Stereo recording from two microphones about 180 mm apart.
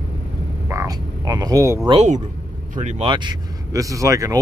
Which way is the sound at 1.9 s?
40° right (ahead or behind).